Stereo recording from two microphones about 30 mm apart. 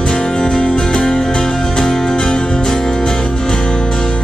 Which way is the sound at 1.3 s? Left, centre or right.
Left.